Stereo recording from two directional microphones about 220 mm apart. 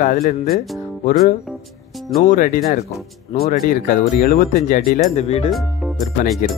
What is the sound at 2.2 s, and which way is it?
Speech, 35° left (ahead or behind).